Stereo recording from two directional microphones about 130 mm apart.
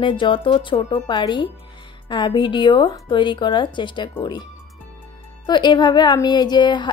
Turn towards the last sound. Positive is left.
turn(degrees=35)  # may be behind; listen again after turning